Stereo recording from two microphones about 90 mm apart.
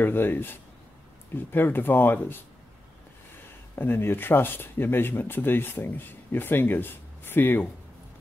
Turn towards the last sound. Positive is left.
turn(degrees=20)  # may be behind; listen again after turning